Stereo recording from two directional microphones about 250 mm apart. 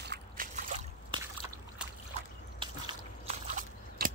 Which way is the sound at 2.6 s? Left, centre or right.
Centre.